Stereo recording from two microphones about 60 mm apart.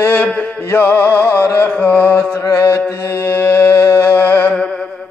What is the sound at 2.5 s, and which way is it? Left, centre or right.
Music, left.